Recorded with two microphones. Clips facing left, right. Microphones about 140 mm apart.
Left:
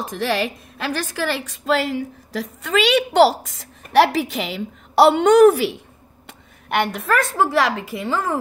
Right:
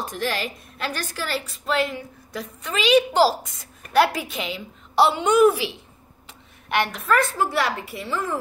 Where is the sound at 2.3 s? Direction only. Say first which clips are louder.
Left 7 dB; 90° left.